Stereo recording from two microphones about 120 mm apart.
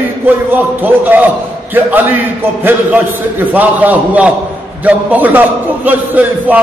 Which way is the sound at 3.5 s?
15° right (ahead or behind).